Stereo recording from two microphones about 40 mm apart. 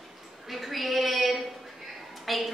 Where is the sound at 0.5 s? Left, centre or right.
Centre.